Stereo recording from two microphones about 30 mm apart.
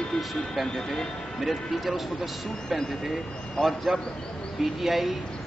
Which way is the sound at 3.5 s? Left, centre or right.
Centre.